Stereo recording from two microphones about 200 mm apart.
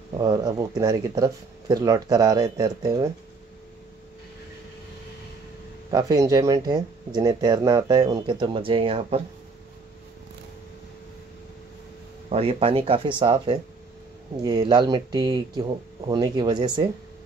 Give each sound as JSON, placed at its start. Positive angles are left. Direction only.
{"t": 0.2, "sound": "speech", "side_deg": -20}
{"t": 5.9, "sound": "speech", "side_deg": -20}
{"t": 12.3, "sound": "speech", "side_deg": -30}